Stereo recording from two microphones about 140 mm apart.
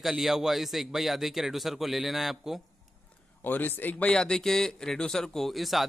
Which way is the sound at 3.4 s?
15° left (ahead or behind).